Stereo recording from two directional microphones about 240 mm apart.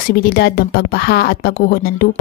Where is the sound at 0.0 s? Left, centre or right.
Left.